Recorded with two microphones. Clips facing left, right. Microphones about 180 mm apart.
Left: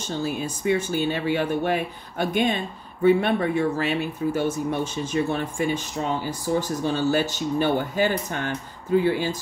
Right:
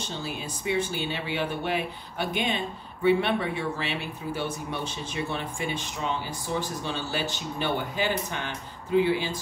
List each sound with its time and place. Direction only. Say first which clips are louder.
0.0 s speech: left 7 dB; 45° left (ahead or behind)